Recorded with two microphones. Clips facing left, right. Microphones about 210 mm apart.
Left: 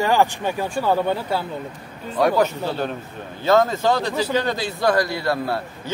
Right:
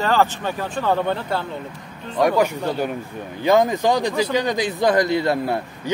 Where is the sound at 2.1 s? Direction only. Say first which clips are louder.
Even; 10° right (ahead or behind).